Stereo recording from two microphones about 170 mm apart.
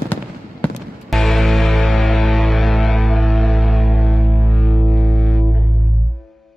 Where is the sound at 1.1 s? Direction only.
Centre (ahead or behind).